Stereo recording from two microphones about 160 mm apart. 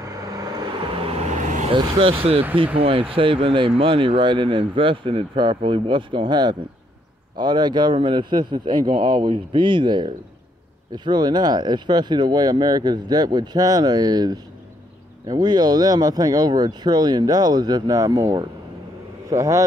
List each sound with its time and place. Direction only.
1.1 s vehicle: 45° right (ahead or behind)
1.9 s speech: 35° right (ahead or behind); by 19.6 s 20° right (ahead or behind)